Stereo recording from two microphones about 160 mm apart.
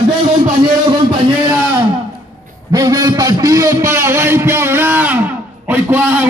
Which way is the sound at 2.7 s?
20° right (ahead or behind).